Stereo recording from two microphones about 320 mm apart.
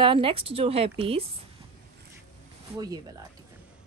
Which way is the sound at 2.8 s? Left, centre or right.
Centre.